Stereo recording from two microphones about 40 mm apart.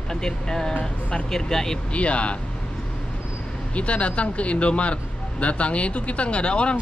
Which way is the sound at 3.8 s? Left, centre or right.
Left.